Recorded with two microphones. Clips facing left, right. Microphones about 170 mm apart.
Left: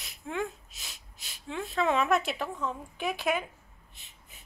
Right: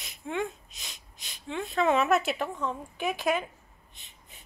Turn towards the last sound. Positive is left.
turn(degrees=0)  # may be behind; listen again after turning